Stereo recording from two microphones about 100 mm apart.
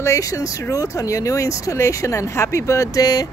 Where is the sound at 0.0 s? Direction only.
30° left (ahead or behind).